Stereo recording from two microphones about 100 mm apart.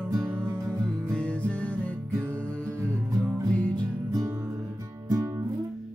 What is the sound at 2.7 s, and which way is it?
Music, 35° right (ahead or behind).